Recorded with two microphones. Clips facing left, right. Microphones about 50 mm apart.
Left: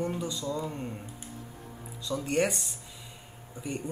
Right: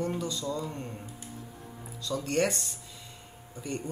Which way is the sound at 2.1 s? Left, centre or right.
Centre.